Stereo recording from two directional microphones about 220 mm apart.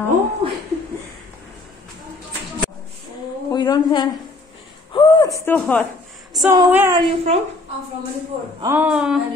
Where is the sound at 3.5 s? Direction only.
20° left (ahead or behind).